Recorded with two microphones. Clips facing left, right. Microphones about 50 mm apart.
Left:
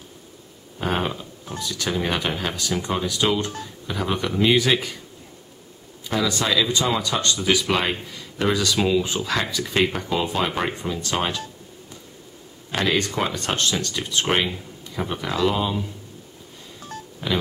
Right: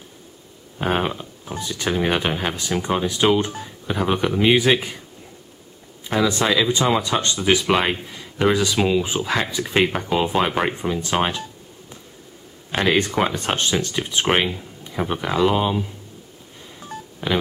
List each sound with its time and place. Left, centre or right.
0.7 s a sound: centre
1.6 s speech: right
6.0 s speech: right
12.7 s speech: right
16.8 s telephone dialing: centre